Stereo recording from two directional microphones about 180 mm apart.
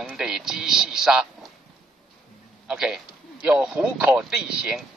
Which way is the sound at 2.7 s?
5° right (ahead or behind).